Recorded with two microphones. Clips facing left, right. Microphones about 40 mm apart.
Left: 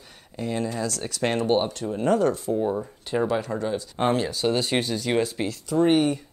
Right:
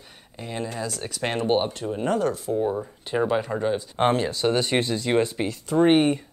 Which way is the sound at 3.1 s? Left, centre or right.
Centre.